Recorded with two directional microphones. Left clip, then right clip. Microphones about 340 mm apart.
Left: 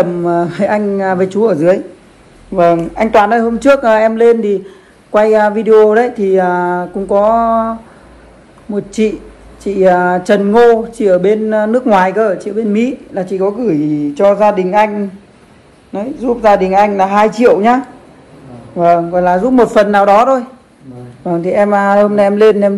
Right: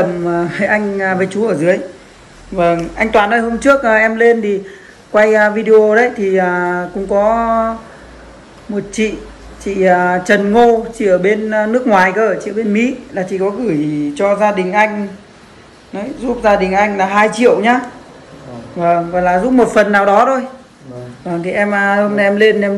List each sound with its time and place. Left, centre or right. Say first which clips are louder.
0.2 s speech: left 3 dB; centre
8.7 s speech: left 3 dB; centre
15.9 s speech: left 4 dB; centre
18.8 s speech: left 3 dB; centre